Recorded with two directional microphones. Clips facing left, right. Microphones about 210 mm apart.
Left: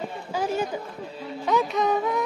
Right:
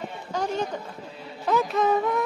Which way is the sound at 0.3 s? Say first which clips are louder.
Left 1 dB; 10° left (ahead or behind).